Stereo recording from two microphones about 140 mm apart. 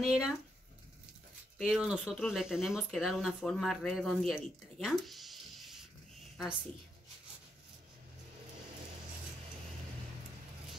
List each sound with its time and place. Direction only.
0.0 s speech: 5° right (ahead or behind)
1.6 s speech: 5° right (ahead or behind)